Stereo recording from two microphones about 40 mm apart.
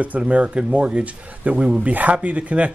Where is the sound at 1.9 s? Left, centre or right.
Right.